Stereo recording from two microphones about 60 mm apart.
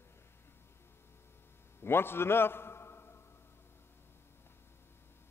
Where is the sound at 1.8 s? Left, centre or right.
Left.